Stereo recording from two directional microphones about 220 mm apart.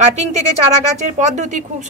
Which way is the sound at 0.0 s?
30° right (ahead or behind).